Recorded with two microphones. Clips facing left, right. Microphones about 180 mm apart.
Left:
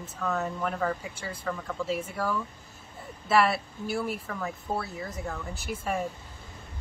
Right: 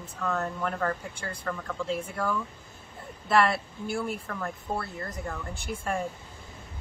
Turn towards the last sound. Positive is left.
turn(degrees=5)  # may be behind; listen again after turning